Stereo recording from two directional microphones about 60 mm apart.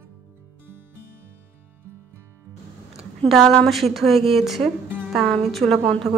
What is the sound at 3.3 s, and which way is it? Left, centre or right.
A woman's voice, centre.